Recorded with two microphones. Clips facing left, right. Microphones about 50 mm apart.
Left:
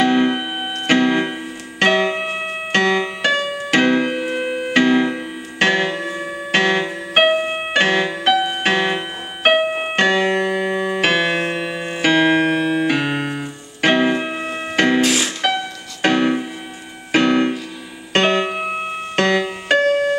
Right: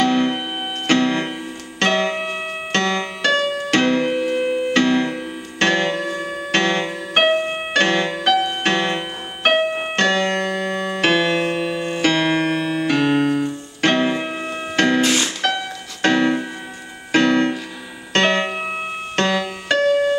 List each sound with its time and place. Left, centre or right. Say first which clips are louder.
0.0 s music: left 2 dB; centre
15.0 s music: left 1 dB; centre
16.0 s music: even; centre
19.8 s music: right 2 dB; left